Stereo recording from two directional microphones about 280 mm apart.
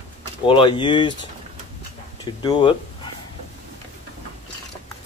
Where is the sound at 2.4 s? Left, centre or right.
Centre.